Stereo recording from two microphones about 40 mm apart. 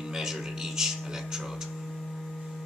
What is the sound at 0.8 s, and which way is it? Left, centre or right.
Speech, centre.